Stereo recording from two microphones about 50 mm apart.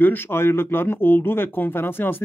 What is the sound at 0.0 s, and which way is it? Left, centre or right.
Speech, left.